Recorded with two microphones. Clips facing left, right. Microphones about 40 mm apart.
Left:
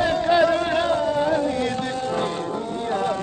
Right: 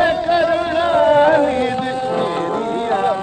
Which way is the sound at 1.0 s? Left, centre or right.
Right.